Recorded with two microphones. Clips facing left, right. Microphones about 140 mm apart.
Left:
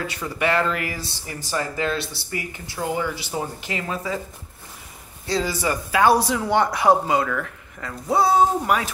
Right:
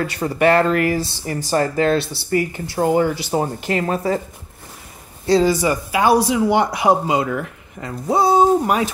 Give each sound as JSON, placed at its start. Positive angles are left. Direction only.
{"t": 0.2, "sound": "speech", "side_deg": -50}
{"t": 2.8, "sound": "speech", "side_deg": -45}
{"t": 5.2, "sound": "speech", "side_deg": -30}
{"t": 5.5, "sound": "speech", "side_deg": -15}